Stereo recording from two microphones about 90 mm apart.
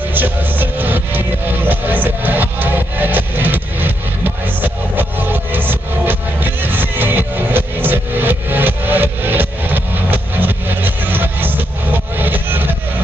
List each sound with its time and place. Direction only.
0.1 s music: 20° right (ahead or behind)